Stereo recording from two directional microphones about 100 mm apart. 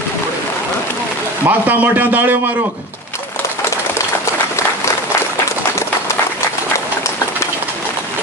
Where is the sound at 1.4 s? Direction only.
20° right (ahead or behind).